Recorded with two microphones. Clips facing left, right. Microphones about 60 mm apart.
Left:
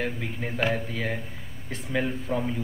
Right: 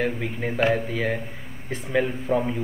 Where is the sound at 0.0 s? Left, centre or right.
Centre.